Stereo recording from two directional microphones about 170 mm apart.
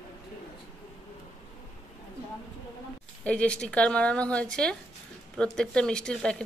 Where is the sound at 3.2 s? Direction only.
5° left (ahead or behind).